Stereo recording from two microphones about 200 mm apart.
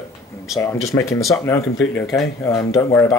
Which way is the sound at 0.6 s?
15° left (ahead or behind).